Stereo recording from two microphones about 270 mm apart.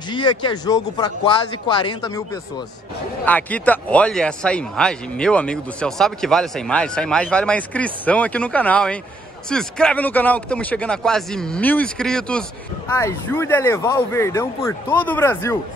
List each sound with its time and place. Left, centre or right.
0.1 s speech: centre
3.3 s speech: centre